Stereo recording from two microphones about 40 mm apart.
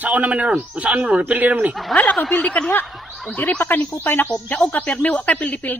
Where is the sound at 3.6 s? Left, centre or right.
Left.